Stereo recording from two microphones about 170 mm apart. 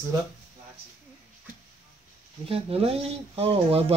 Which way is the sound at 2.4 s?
35° right (ahead or behind).